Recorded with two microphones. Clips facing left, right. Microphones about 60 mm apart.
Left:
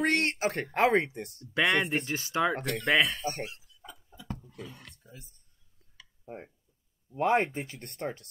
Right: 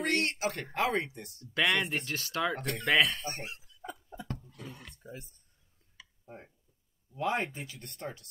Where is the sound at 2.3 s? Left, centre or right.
Centre.